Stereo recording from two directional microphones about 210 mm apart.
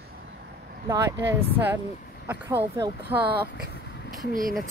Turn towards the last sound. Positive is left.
turn(degrees=-40)  # may be behind; listen again after turning